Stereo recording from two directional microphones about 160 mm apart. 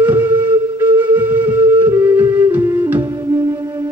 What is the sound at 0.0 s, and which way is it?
Music, 10° right (ahead or behind).